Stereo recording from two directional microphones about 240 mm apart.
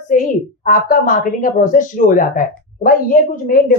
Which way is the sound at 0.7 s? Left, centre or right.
Left.